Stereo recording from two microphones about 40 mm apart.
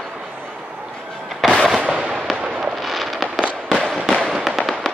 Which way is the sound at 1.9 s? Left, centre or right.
Right.